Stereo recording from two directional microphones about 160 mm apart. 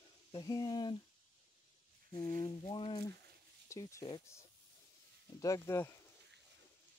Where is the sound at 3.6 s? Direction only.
20° left (ahead or behind).